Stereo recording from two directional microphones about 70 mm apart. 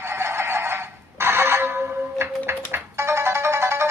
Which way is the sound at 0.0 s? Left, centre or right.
Right.